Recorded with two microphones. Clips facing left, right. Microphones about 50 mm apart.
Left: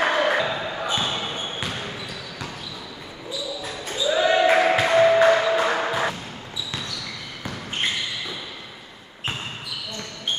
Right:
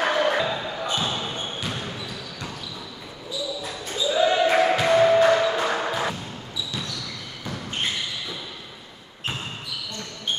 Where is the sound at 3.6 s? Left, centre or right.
Centre.